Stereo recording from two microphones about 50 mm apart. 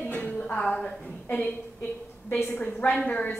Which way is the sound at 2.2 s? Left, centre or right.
Left.